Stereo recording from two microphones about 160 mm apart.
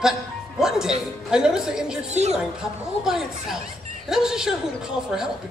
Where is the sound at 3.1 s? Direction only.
Centre (ahead or behind).